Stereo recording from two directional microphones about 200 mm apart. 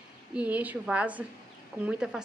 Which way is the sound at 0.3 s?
5° right (ahead or behind).